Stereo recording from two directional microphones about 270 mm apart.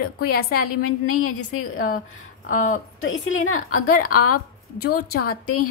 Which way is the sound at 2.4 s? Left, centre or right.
Left.